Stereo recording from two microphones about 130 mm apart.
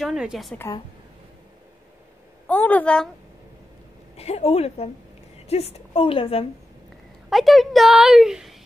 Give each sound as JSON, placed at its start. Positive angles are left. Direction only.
{"t": 0.0, "sound": "a woman's voice", "side_deg": -5}
{"t": 2.4, "sound": "a woman's voice", "side_deg": 10}
{"t": 4.2, "sound": "a woman's voice", "side_deg": 50}
{"t": 7.2, "sound": "a woman's voice", "side_deg": 0}